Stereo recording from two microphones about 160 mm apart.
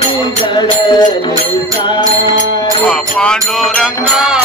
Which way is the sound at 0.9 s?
25° left (ahead or behind).